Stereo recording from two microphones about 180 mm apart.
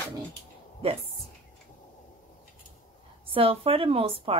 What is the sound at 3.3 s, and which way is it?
A woman's voice, 30° right (ahead or behind).